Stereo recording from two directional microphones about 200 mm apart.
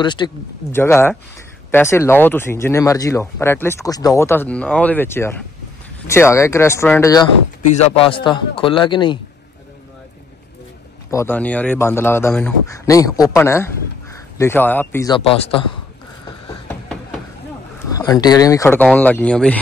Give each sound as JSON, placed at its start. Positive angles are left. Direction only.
{"t": 0.0, "sound": "a man's voice", "side_deg": 20}
{"t": 0.7, "sound": "speech", "side_deg": 10}
{"t": 7.6, "sound": "a man's voice", "side_deg": 30}
{"t": 11.1, "sound": "speech", "side_deg": 10}
{"t": 17.9, "sound": "speech", "side_deg": 15}